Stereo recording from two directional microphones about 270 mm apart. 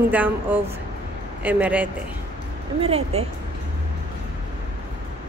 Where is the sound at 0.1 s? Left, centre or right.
Centre.